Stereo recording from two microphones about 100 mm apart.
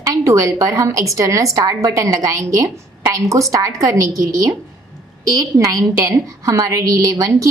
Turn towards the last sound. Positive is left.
turn(degrees=-35)  # may be behind; listen again after turning